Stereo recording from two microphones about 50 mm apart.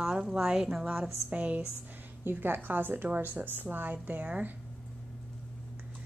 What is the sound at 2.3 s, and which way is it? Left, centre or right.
A woman's voice, right.